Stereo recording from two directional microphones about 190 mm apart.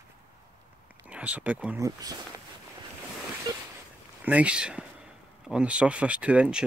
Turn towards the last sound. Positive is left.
turn(degrees=-5)  # may be behind; listen again after turning